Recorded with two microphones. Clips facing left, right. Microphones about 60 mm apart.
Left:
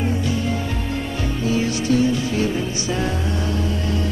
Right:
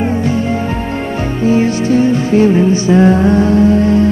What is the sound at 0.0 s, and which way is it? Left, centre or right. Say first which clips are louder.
Music: right 8 dB; right.